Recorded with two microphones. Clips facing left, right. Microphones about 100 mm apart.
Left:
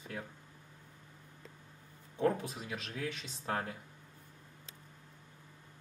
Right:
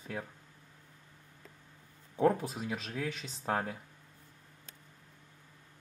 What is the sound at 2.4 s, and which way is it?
Speech, 30° right (ahead or behind).